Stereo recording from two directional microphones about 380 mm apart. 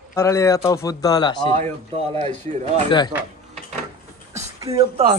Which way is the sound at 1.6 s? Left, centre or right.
Centre.